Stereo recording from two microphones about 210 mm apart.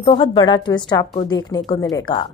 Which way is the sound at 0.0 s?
25° left (ahead or behind).